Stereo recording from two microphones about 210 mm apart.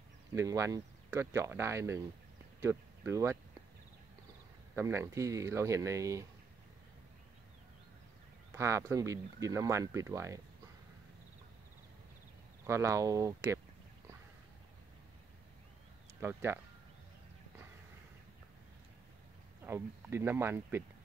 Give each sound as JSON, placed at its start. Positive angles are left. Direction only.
{"t": 0.3, "sound": "speech", "side_deg": -15}
{"t": 4.7, "sound": "speech", "side_deg": -10}
{"t": 8.5, "sound": "speech", "side_deg": -15}
{"t": 12.6, "sound": "speech", "side_deg": -15}
{"t": 16.2, "sound": "speech", "side_deg": -10}
{"t": 19.6, "sound": "speech", "side_deg": -10}